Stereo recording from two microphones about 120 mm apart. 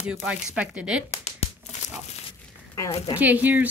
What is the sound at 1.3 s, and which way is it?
Crumpling, 65° left (ahead or behind).